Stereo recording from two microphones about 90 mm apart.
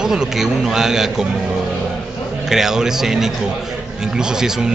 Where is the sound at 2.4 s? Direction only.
5° right (ahead or behind).